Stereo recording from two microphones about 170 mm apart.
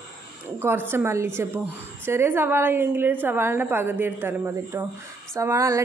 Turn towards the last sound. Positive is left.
turn(degrees=-20)  # may be behind; listen again after turning